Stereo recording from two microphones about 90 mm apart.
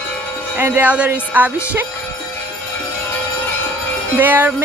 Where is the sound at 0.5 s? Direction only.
20° right (ahead or behind).